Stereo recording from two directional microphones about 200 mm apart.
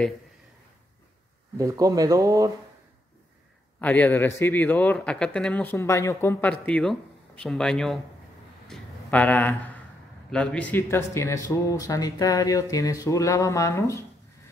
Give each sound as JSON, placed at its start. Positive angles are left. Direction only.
{"t": 1.6, "sound": "speech", "side_deg": -15}
{"t": 3.8, "sound": "speech", "side_deg": 10}
{"t": 8.6, "sound": "a sound", "side_deg": 5}
{"t": 10.3, "sound": "speech", "side_deg": 5}